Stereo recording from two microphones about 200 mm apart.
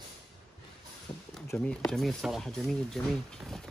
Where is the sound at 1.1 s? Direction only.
25° left (ahead or behind).